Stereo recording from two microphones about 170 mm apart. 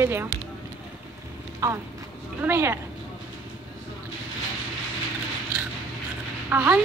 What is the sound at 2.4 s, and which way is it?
Speech, 15° right (ahead or behind).